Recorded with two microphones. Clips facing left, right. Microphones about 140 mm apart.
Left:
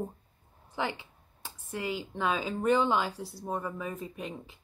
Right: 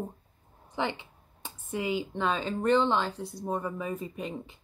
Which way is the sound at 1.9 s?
Centre (ahead or behind).